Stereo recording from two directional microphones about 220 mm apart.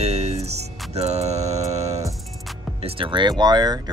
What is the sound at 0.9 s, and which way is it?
Music, 30° right (ahead or behind).